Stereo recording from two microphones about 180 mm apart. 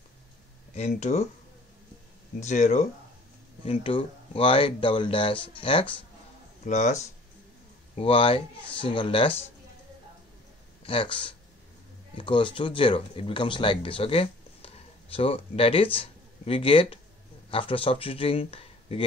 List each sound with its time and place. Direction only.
0.7 s speech: 40° left (ahead or behind)
2.4 s speech: 40° left (ahead or behind)
6.6 s speech: 40° left (ahead or behind)
10.8 s speech: 30° left (ahead or behind)